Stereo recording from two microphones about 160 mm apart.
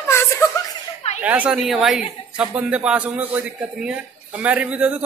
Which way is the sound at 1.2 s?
10° right (ahead or behind).